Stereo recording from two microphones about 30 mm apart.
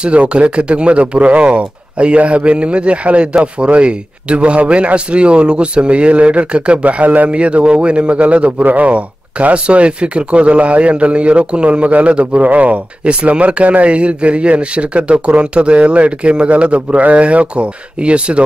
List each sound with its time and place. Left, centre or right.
0.0 s speech: right
6.8 s speech: right
7.2 s speech: right
8.9 s speech: right
12.4 s speech: right